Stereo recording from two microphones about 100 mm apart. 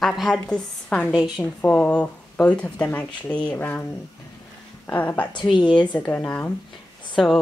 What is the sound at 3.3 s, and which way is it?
Speech, 45° left (ahead or behind).